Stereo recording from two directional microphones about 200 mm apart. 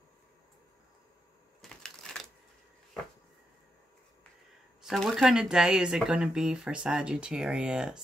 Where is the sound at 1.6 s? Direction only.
5° left (ahead or behind).